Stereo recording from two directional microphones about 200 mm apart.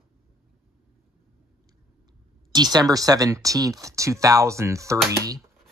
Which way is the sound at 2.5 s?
20° right (ahead or behind).